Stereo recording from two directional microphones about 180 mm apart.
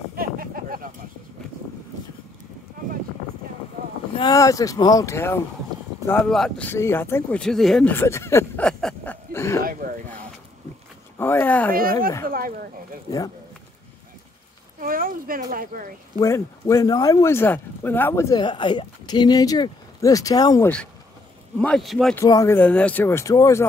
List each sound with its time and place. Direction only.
0.1 s a sound: 55° right (ahead or behind)
4.2 s speech: 20° left (ahead or behind)
11.1 s speech: 10° left (ahead or behind)
12.3 s speech: 50° right (ahead or behind)
14.8 s a sound: 50° right (ahead or behind)
16.2 s speech: 15° left (ahead or behind)
20.6 s speech: 5° left (ahead or behind)
22.1 s speech: 15° left (ahead or behind)